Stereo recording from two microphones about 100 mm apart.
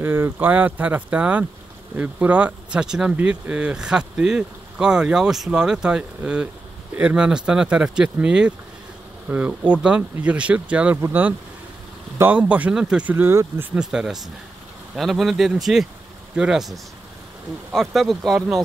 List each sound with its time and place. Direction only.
0.0 s speech: 20° right (ahead or behind)
12.2 s speech: 15° right (ahead or behind)
13.1 s speech: 25° right (ahead or behind)
13.7 s speech: 5° right (ahead or behind)